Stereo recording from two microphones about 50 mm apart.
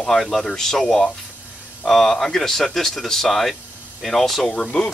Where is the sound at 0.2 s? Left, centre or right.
Centre.